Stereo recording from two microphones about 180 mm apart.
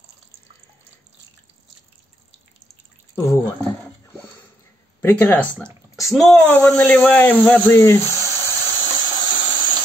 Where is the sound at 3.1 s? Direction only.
15° left (ahead or behind).